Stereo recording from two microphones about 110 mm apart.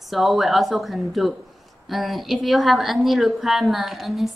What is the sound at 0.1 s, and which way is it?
A woman's voice, centre (ahead or behind).